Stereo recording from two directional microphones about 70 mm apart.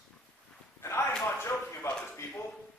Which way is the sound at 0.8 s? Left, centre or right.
Left.